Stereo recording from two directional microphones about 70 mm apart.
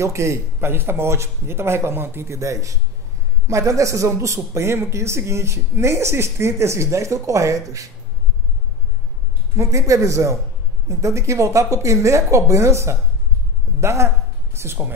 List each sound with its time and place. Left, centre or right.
0.0 s a man's voice: right
9.6 s a man's voice: right